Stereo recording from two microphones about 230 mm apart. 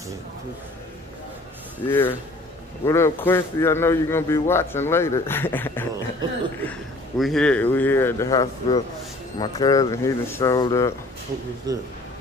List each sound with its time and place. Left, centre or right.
1.9 s a man's voice: centre
11.7 s a man's voice: centre